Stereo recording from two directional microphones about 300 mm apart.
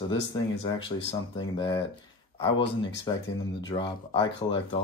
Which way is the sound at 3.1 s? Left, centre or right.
Centre.